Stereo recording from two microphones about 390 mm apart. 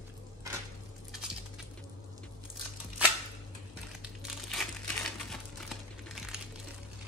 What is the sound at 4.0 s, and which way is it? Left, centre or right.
Crumpling, centre.